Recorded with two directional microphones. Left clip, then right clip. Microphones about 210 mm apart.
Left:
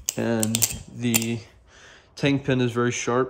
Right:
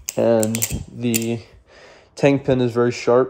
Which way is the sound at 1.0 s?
30° left (ahead or behind).